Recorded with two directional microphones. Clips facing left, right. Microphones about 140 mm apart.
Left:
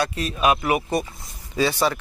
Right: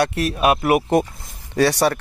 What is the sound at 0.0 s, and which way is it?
Speech, 70° right (ahead or behind).